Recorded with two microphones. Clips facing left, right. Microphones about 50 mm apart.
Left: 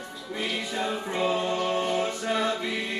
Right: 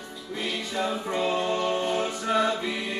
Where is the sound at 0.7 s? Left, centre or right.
Centre.